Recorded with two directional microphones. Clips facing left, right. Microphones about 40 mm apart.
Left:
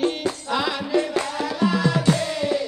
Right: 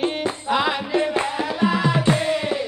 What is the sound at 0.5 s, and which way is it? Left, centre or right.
Music, right.